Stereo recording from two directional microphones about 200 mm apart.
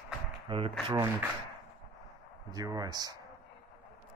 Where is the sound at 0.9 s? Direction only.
15° right (ahead or behind).